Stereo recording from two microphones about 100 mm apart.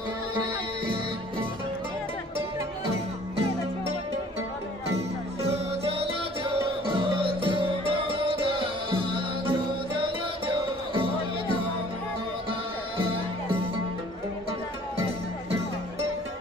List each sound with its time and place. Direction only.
4.9 s music: 90° right; by 11.0 s 60° right (ahead or behind)